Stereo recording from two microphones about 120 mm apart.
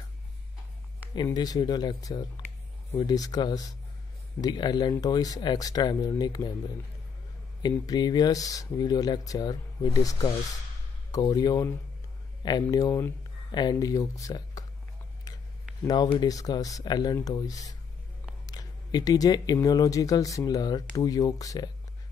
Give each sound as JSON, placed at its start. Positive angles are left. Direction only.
{"t": 1.1, "sound": "speech", "side_deg": 35}
{"t": 7.8, "sound": "speech", "side_deg": 35}
{"t": 15.9, "sound": "speech", "side_deg": 35}